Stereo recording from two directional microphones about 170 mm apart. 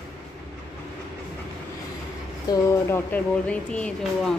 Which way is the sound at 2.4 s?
10° left (ahead or behind).